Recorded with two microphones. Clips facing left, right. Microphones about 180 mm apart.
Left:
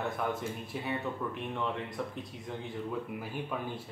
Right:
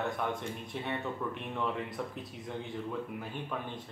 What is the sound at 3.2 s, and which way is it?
Speech, 5° left (ahead or behind).